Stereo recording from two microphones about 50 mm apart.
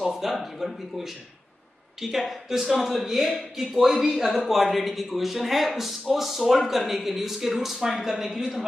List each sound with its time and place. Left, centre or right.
0.0 s speech: centre